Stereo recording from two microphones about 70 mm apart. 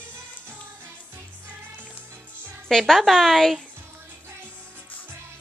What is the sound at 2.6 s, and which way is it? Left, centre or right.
Speech, centre.